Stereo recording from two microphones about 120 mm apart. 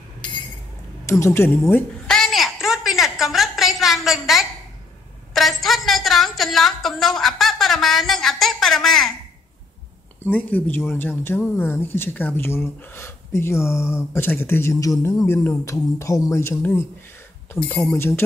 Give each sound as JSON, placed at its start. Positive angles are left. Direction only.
{"t": 1.0, "sound": "speech", "side_deg": 25}
{"t": 2.0, "sound": "a sound", "side_deg": 5}
{"t": 5.3, "sound": "a woman's voice", "side_deg": 0}
{"t": 10.3, "sound": "speech", "side_deg": 15}